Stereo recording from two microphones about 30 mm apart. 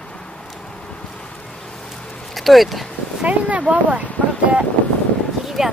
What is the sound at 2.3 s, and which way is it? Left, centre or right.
Speech, centre.